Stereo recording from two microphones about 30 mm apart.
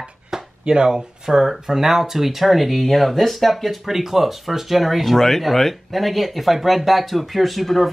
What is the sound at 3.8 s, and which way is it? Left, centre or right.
Speech, centre.